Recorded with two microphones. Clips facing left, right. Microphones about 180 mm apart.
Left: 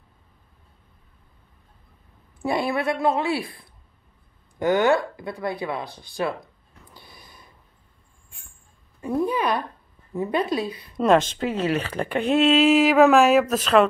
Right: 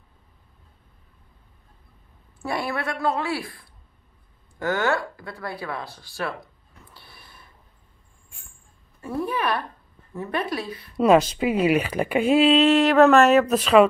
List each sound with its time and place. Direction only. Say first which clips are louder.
2.4 s speech: left 4 dB; 20° left (ahead or behind)
6.9 s snort: left 3 dB; 15° left (ahead or behind)
9.0 s a woman's voice: left 3 dB; 15° left (ahead or behind)
11.0 s speech: right 2 dB; 5° right (ahead or behind)